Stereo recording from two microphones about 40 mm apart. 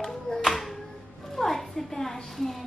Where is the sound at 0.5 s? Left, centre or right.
Centre.